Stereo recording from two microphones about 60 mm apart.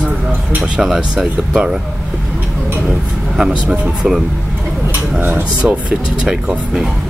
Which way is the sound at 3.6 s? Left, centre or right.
Right.